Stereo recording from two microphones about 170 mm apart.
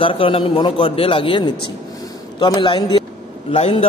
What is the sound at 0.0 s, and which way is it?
A man's voice, 30° left (ahead or behind).